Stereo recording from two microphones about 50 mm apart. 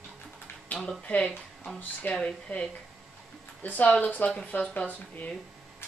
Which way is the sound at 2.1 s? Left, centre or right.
Centre.